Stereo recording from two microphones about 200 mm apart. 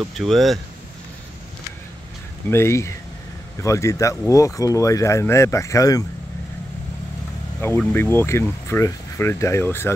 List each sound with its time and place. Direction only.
0.0 s speech: centre (ahead or behind)
2.5 s speech: 15° left (ahead or behind)
7.9 s speech: 10° left (ahead or behind)